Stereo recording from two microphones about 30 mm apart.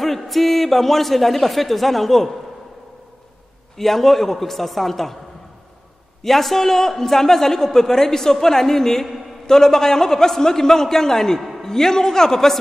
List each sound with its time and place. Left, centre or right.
0.0 s a man's voice: centre
3.7 s a man's voice: centre
6.2 s a man's voice: centre